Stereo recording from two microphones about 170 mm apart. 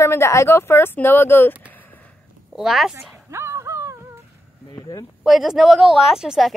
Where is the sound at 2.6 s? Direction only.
Centre (ahead or behind).